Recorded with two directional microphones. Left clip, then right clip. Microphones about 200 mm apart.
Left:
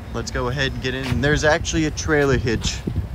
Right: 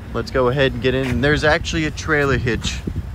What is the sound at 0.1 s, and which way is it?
Speech, 5° left (ahead or behind).